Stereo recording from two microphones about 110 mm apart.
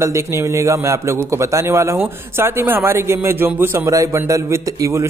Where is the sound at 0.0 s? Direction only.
25° right (ahead or behind).